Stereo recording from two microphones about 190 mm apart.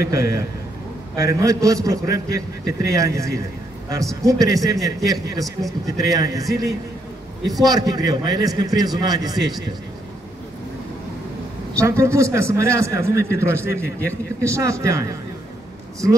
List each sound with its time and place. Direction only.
0.0 s a man's voice: 15° right (ahead or behind)
11.7 s a man's voice: 15° right (ahead or behind)